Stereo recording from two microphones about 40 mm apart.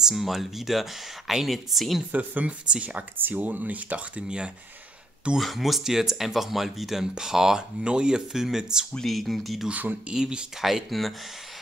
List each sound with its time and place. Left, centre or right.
0.1 s speech: centre
2.1 s speech: right
3.2 s speech: right
5.4 s speech: centre
7.8 s speech: right
8.3 s speech: centre
9.0 s speech: centre
9.7 s speech: right
10.1 s speech: centre
10.6 s speech: centre